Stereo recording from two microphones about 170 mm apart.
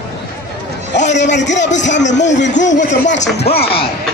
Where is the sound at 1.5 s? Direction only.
45° left (ahead or behind).